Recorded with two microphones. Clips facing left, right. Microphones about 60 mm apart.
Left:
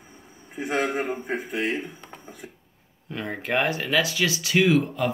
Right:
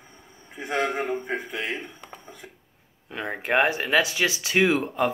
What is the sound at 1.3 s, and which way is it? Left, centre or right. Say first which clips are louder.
Speech: left 3 dB; left.